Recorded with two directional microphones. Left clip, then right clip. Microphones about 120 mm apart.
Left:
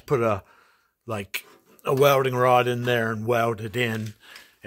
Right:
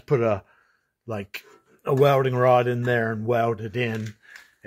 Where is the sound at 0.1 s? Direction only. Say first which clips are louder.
Right 1 dB; 5° left (ahead or behind).